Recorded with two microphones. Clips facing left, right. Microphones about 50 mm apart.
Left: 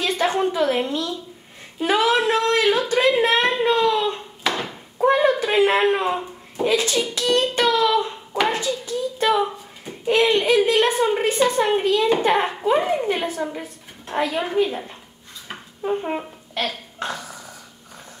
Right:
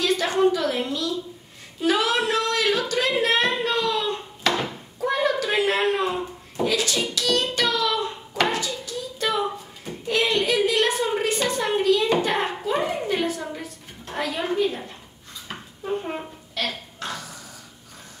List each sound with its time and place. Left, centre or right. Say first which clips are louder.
0.0 s a woman's voice: even; left
4.4 s a sound: right 2 dB; centre
4.9 s a sound: left 6 dB; left
6.6 s a woman's voice: left 3 dB; left
7.5 s child singing: left 5 dB; left
8.5 s hands: left 3 dB; left
10.0 s a woman's voice: left 5 dB; left
15.4 s dishes: left 5 dB; left
16.5 s burping: left 3 dB; left